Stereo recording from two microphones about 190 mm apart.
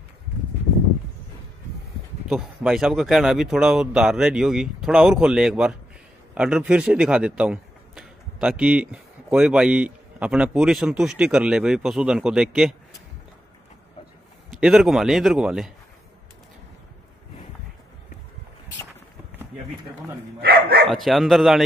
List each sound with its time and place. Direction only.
2.2 s speech: centre (ahead or behind)
14.6 s speech: 5° right (ahead or behind)
20.4 s speech: 50° right (ahead or behind)
20.8 s speech: centre (ahead or behind)